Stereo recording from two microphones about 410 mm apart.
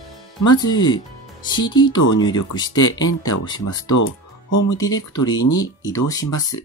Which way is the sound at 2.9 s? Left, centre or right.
Left.